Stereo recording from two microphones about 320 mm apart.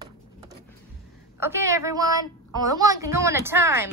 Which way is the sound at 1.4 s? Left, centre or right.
Centre.